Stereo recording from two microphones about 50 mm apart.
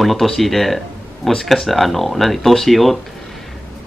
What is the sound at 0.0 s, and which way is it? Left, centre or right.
Speech, centre.